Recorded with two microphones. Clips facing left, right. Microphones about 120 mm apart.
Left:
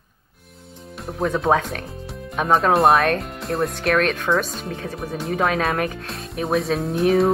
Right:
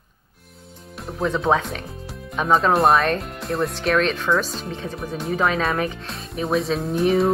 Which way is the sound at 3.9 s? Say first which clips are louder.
Even; 55° left (ahead or behind).